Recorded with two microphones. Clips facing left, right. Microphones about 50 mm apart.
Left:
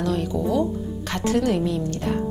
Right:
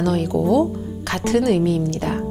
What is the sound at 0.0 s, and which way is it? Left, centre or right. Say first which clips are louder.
A woman's voice: right 4 dB; right.